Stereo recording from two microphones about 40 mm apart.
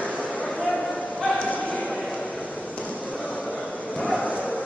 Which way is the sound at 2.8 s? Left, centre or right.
Left.